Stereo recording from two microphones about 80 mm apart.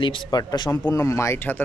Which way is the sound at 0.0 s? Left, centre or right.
Left.